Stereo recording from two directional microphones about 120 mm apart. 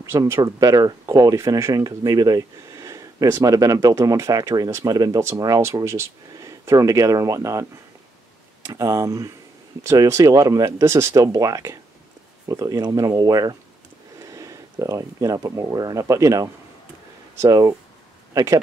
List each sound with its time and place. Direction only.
0.0 s speech: 25° right (ahead or behind)
8.6 s speech: 30° right (ahead or behind)